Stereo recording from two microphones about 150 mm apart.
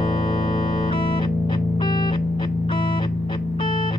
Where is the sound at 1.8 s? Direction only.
30° left (ahead or behind).